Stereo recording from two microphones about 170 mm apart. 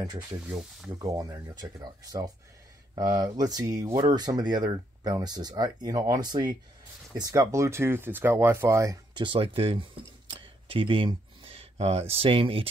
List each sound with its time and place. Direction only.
0.0 s speech: 20° right (ahead or behind)